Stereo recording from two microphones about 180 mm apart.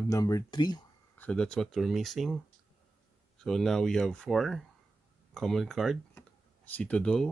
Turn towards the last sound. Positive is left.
turn(degrees=5)  # may be behind; listen again after turning